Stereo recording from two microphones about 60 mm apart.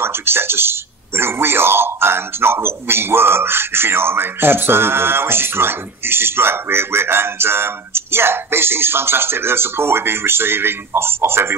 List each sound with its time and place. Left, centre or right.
0.0 s speech: right